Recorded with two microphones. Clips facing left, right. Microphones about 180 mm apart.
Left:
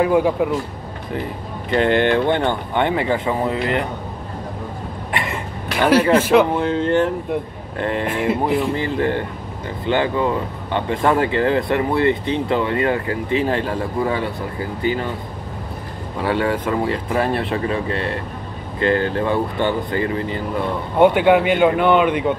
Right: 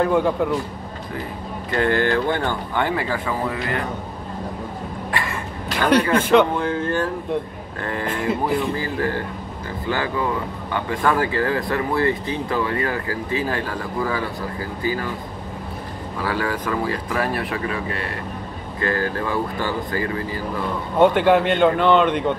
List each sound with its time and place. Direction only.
0.0 s speech: 5° left (ahead or behind)
1.7 s speech: 20° left (ahead or behind)
5.1 s vehicle: 20° left (ahead or behind)
5.8 s speech: 5° left (ahead or behind)
6.6 s speech: 20° left (ahead or behind)
16.2 s speech: 25° left (ahead or behind)
21.0 s speech: 5° left (ahead or behind)